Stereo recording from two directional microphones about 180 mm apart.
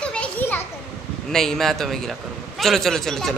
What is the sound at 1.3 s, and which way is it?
Speech, centre (ahead or behind).